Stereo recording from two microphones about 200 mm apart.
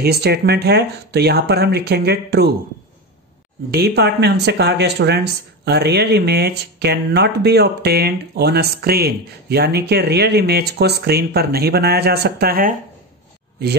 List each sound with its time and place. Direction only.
0.0 s speech: 55° right (ahead or behind)
3.7 s speech: 55° right (ahead or behind)